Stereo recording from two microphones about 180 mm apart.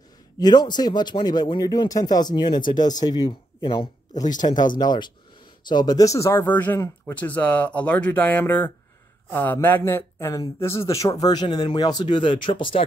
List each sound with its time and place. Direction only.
0.4 s speech: 25° left (ahead or behind)